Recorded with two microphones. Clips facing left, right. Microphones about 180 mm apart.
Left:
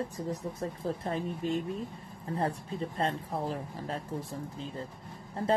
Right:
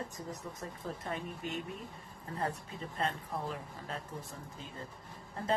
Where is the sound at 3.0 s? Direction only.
35° left (ahead or behind).